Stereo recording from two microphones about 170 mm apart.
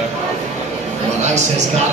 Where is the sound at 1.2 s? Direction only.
45° right (ahead or behind).